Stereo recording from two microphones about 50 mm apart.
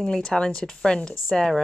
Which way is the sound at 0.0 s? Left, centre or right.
Centre.